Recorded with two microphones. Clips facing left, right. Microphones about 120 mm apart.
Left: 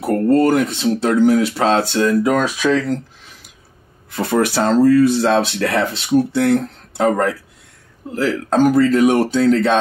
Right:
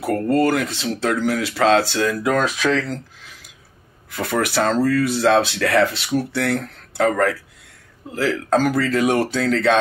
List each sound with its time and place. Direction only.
0.0 s speech: 25° left (ahead or behind)
2.3 s speech: 15° left (ahead or behind)
4.1 s speech: 25° left (ahead or behind)
8.6 s speech: 25° left (ahead or behind)